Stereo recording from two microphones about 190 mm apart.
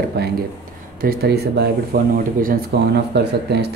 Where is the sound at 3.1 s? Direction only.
60° right (ahead or behind).